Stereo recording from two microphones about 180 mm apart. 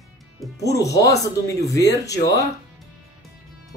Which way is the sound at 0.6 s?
20° left (ahead or behind).